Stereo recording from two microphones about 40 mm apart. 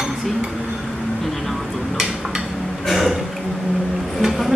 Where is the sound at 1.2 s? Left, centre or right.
Centre.